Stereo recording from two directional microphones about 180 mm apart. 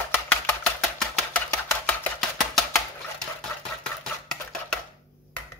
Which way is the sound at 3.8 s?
5° left (ahead or behind).